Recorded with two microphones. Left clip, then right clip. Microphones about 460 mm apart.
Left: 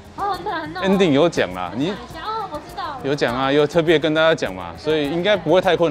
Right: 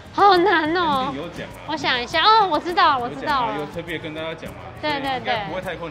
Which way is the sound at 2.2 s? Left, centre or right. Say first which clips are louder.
Right 11 dB; right.